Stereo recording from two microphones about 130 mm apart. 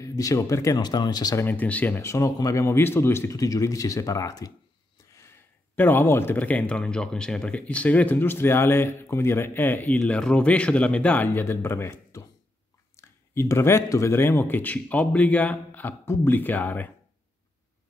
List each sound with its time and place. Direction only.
0.0 s speech: 25° left (ahead or behind)
1.4 s speech: 15° left (ahead or behind)